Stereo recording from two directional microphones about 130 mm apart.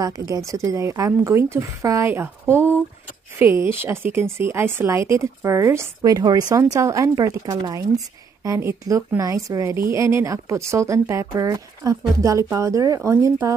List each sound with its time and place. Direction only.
0.0 s a woman's voice: 25° right (ahead or behind)